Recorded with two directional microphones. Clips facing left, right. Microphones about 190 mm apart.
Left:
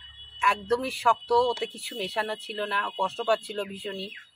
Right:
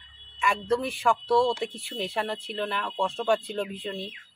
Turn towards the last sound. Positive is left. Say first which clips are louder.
# right 1 dB
turn(degrees=0)  # may be behind; listen again after turning